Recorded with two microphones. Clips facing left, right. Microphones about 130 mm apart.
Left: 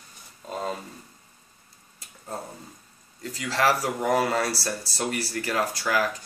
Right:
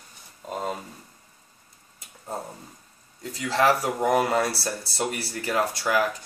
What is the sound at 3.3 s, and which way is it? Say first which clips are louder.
Speech: right 2 dB; 20° right (ahead or behind).